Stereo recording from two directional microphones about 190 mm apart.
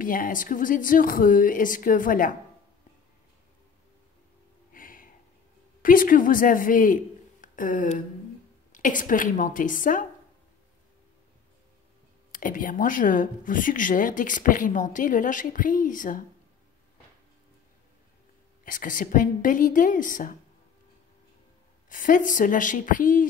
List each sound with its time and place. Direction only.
0.0 s speech: 45° left (ahead or behind)
4.7 s a sound: 45° left (ahead or behind)
5.8 s a woman's voice: 45° left (ahead or behind)
12.3 s speech: 45° left (ahead or behind)
18.6 s speech: 45° left (ahead or behind)
21.8 s speech: 45° left (ahead or behind)